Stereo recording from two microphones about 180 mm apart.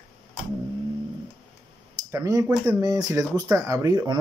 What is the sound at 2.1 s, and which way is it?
Speech, 20° right (ahead or behind).